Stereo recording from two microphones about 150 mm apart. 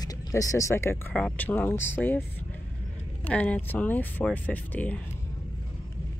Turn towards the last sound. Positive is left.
turn(degrees=10)  # may be behind; listen again after turning